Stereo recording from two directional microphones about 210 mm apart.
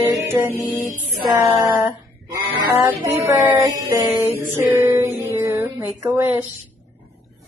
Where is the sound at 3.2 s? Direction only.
15° right (ahead or behind).